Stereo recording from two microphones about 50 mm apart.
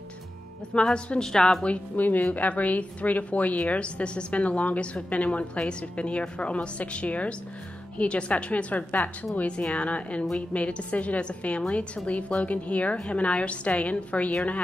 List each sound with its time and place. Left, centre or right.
0.9 s a woman's voice: centre
2.0 s a woman's voice: left